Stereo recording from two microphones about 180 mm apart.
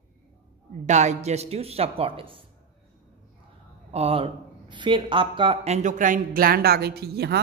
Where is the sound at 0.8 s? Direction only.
40° right (ahead or behind).